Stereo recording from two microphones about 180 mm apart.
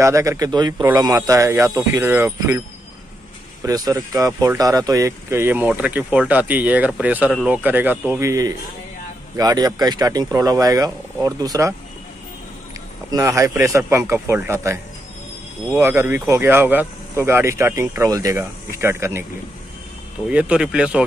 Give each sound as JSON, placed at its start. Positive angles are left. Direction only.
{"t": 0.0, "sound": "speech", "side_deg": -15}
{"t": 3.6, "sound": "speech", "side_deg": -20}
{"t": 13.1, "sound": "speech", "side_deg": -15}
{"t": 20.2, "sound": "speech", "side_deg": -5}